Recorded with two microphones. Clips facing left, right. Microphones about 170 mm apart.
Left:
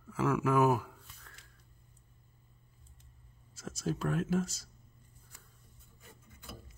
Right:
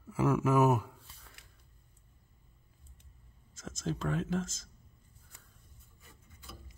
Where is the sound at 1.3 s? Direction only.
10° right (ahead or behind).